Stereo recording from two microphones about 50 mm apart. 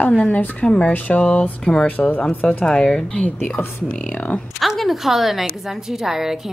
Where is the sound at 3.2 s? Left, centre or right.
Left.